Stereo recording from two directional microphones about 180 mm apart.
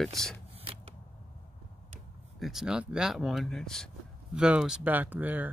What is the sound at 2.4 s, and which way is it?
Speech, 5° right (ahead or behind).